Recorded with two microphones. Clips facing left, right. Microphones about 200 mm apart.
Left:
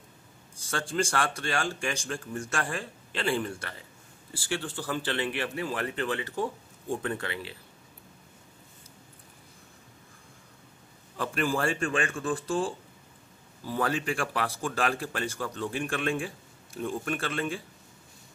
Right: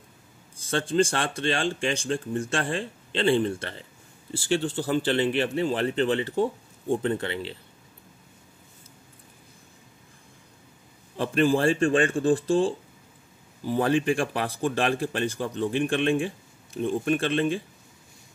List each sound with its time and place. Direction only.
0.6 s speech: 20° right (ahead or behind)
11.1 s speech: 25° right (ahead or behind)
13.7 s speech: 25° right (ahead or behind)